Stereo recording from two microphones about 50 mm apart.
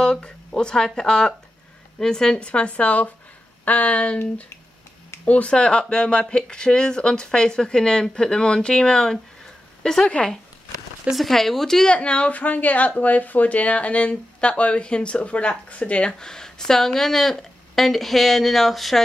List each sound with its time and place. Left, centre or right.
0.0 s speech: centre
5.2 s speech: left
11.1 s speech: centre
11.9 s speech: left
12.3 s speech: left; by 18.9 s centre